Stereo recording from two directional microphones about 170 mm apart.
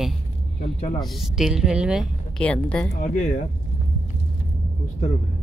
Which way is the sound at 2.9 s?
50° left (ahead or behind).